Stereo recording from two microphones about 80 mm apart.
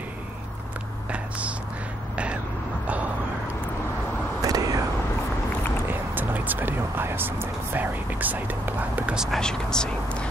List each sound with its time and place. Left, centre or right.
4.4 s vehicle: right
5.9 s speech: right
9.1 s speech: centre
9.4 s speech: centre